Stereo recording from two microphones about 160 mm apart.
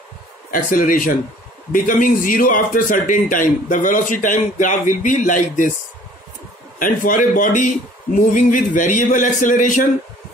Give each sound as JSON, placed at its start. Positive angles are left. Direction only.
{"t": 0.5, "sound": "a man's voice", "side_deg": 55}
{"t": 6.8, "sound": "a man's voice", "side_deg": 55}